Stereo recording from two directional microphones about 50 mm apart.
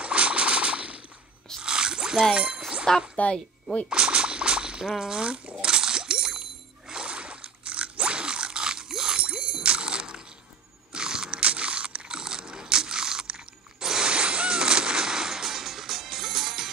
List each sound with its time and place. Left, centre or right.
0.0 s a sound: right
1.6 s squish: centre
2.3 s speech: right
2.9 s speech: centre
3.9 s a sound: right
9.2 s music: right
10.9 s biting: centre